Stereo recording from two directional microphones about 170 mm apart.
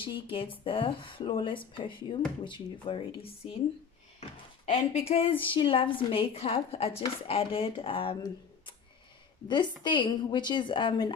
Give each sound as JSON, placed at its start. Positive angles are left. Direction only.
{"t": 0.0, "sound": "a woman's voice", "side_deg": 30}
{"t": 4.6, "sound": "a woman's voice", "side_deg": 35}